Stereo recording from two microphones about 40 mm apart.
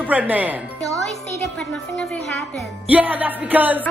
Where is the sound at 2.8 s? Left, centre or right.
Right.